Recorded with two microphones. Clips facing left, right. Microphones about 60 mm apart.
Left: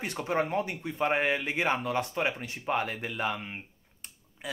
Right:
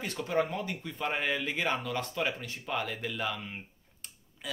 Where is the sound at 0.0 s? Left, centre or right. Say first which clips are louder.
Left 1 dB; left.